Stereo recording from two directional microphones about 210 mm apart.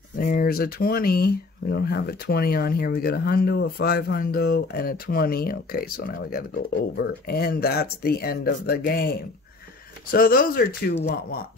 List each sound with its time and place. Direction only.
0.2 s speech: 45° left (ahead or behind)
10.1 s speech: 45° left (ahead or behind)